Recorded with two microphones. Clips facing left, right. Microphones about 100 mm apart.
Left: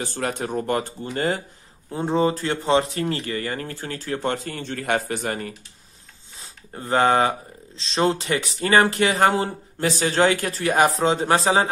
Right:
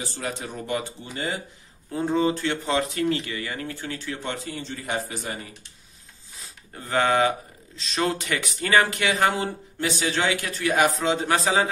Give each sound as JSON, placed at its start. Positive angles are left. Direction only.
{"t": 0.0, "sound": "speech", "side_deg": 55}
{"t": 1.9, "sound": "speech", "side_deg": 30}
{"t": 6.4, "sound": "speech", "side_deg": 30}